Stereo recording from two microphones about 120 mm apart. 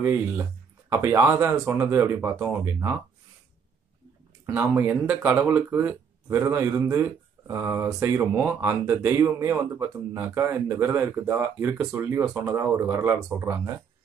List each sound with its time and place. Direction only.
0.0 s speech: 15° right (ahead or behind)
4.5 s speech: 15° right (ahead or behind)